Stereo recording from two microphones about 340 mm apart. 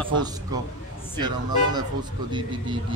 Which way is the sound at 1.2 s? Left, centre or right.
Centre.